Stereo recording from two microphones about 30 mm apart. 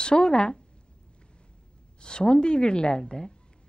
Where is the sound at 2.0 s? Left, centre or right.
Left.